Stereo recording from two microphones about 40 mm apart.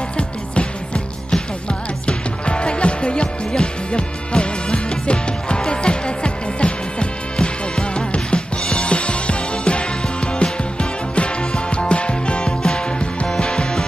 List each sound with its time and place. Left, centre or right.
1.3 s music: left